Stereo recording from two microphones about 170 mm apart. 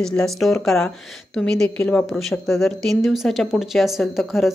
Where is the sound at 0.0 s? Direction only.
5° left (ahead or behind).